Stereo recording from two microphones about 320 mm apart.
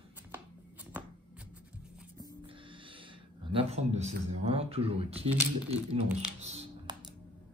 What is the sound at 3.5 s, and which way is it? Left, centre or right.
Speech, centre.